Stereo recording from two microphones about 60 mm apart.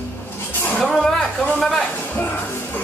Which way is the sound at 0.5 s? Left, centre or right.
Left.